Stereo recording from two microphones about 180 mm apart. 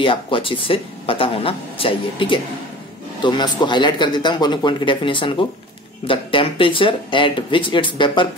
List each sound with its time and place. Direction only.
0.0 s speech: 30° left (ahead or behind)